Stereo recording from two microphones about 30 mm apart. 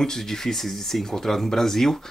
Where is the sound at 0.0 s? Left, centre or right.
Centre.